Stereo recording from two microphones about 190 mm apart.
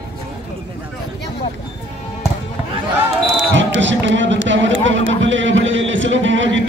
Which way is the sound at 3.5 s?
75° right (ahead or behind).